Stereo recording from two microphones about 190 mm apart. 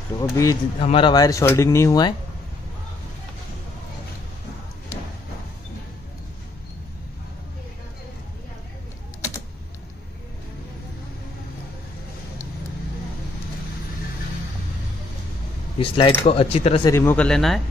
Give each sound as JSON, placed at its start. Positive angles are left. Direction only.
{"t": 0.2, "sound": "speech", "side_deg": 15}
{"t": 0.7, "sound": "speech", "side_deg": 30}
{"t": 15.8, "sound": "speech", "side_deg": 30}
{"t": 16.8, "sound": "speech", "side_deg": 15}